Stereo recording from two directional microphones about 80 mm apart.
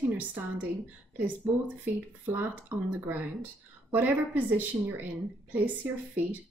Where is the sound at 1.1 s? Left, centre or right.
Centre.